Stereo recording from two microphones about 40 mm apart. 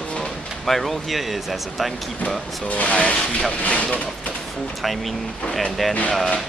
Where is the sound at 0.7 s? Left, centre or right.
Centre.